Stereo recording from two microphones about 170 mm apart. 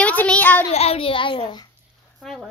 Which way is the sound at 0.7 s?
35° left (ahead or behind).